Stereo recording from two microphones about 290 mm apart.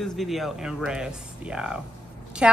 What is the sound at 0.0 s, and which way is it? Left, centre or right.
A woman's voice, centre.